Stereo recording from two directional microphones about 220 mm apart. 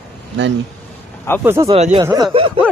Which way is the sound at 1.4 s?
10° right (ahead or behind).